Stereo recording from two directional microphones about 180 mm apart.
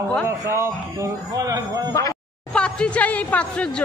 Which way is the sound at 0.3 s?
15° right (ahead or behind).